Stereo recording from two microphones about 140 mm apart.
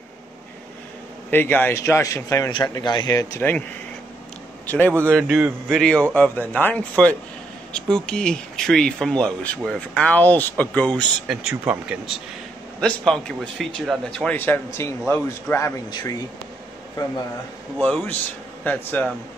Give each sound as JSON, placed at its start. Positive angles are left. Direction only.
{"t": 1.3, "sound": "a man's voice", "side_deg": 15}
{"t": 2.5, "sound": "speech", "side_deg": 30}
{"t": 4.6, "sound": "a man's voice", "side_deg": 15}
{"t": 11.2, "sound": "speech", "side_deg": -5}
{"t": 12.8, "sound": "a man's voice", "side_deg": 5}
{"t": 15.9, "sound": "speech", "side_deg": 30}
{"t": 17.7, "sound": "a man's voice", "side_deg": 5}